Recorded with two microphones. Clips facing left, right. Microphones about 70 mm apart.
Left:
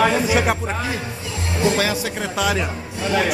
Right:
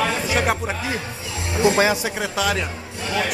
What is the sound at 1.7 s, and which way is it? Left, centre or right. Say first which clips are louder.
Speech: right 2 dB; right.